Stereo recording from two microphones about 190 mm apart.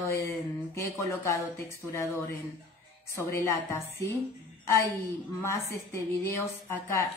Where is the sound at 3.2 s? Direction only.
15° left (ahead or behind).